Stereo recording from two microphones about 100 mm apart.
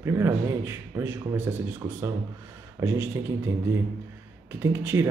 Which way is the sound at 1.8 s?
35° right (ahead or behind).